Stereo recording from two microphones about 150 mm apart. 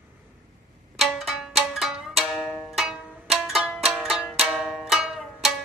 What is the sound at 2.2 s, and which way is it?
Music, centre (ahead or behind).